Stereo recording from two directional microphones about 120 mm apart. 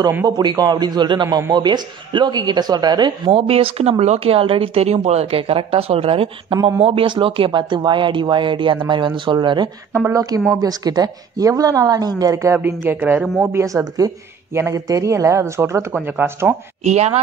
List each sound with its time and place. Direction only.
0.4 s speech: 35° right (ahead or behind)
3.3 s a woman's voice: 55° right (ahead or behind); by 9.7 s 40° right (ahead or behind)
9.9 s speech: 25° right (ahead or behind)
12.5 s speech: 15° right (ahead or behind)
13.2 s speech: centre (ahead or behind)
13.5 s speech: 25° right (ahead or behind)
16.8 s a woman's voice: 65° right (ahead or behind)